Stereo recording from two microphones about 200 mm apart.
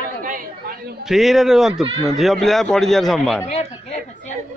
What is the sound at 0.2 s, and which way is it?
Chatter, 45° right (ahead or behind).